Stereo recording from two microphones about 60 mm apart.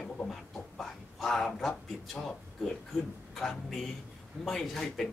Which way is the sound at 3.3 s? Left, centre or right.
Centre.